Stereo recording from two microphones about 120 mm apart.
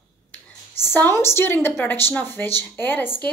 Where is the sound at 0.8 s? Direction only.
20° left (ahead or behind).